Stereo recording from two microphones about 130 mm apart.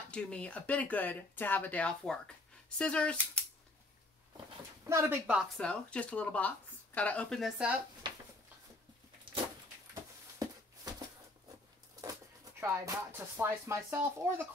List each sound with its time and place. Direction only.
0.1 s speech: 10° left (ahead or behind)
4.8 s speech: 20° right (ahead or behind)
5.6 s speech: 10° left (ahead or behind); by 7.8 s 10° right (ahead or behind)
8.0 s a sound: 35° right (ahead or behind)
10.4 s a sound: 25° right (ahead or behind)
12.5 s speech: 25° right (ahead or behind)